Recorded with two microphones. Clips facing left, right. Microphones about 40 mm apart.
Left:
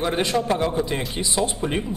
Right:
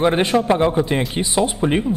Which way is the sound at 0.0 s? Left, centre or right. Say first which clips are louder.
Right 6 dB; right.